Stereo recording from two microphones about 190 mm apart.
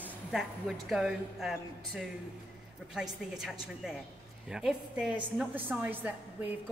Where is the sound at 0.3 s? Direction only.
Centre (ahead or behind).